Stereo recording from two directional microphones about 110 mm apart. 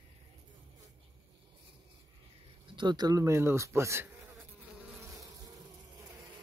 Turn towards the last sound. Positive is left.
turn(degrees=-20)  # may be behind; listen again after turning